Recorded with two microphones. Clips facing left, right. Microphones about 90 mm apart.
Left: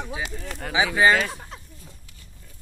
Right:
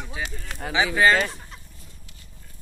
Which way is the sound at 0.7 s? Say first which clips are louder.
Even; 10° left (ahead or behind).